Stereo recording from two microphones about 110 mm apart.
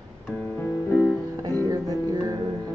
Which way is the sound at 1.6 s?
35° right (ahead or behind).